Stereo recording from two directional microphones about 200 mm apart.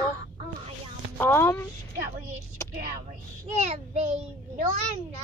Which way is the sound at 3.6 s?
35° right (ahead or behind).